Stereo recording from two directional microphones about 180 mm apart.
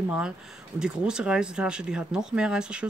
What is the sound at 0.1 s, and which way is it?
Speech, 5° right (ahead or behind).